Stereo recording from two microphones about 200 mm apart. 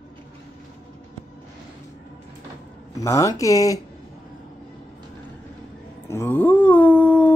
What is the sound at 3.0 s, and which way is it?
Speech, 15° left (ahead or behind).